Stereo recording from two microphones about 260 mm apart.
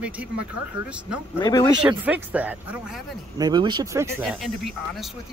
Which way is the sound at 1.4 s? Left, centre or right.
Centre.